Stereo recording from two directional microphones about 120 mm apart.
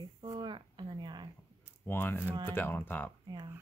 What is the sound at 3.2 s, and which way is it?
Speech, 35° right (ahead or behind).